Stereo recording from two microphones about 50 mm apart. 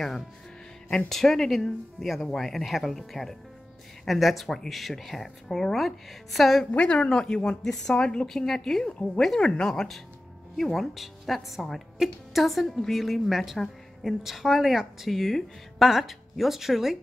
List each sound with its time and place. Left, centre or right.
1.0 s a woman's voice: centre
6.7 s speech: left
7.0 s a woman's voice: centre